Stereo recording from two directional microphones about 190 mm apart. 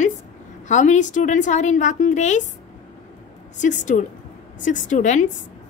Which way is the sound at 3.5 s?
40° left (ahead or behind).